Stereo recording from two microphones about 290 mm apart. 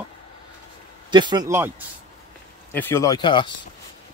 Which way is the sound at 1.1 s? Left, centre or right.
Centre.